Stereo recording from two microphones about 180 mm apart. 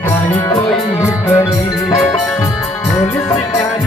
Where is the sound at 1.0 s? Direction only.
20° left (ahead or behind).